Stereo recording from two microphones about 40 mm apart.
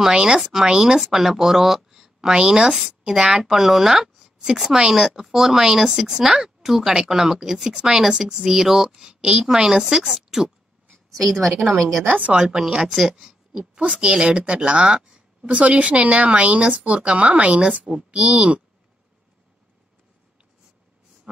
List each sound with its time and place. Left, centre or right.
0.1 s speech: centre
0.4 s speech: centre
9.1 s a sound: right
9.4 s a woman's voice: centre
12.2 s speech: right